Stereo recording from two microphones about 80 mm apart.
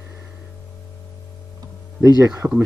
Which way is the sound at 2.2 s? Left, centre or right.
Right.